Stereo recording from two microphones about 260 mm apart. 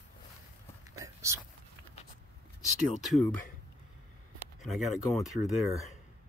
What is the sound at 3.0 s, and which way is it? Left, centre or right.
Speech, centre.